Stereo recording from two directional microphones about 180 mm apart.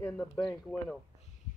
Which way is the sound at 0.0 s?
5° left (ahead or behind).